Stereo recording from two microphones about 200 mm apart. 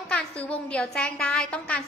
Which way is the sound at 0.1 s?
5° left (ahead or behind).